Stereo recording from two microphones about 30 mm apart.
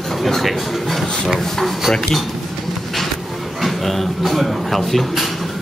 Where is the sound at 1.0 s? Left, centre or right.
Left.